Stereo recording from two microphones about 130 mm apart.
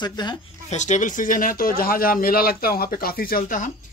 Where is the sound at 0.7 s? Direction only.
65° left (ahead or behind).